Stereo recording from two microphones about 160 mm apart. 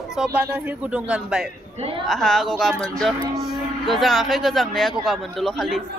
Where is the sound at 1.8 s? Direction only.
35° right (ahead or behind).